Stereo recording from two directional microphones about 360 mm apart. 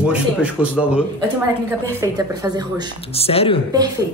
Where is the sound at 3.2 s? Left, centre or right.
Centre.